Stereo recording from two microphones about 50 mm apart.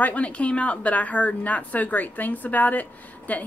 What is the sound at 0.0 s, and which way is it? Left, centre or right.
Speech, left.